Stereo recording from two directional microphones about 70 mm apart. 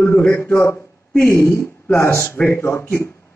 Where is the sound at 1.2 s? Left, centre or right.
Left.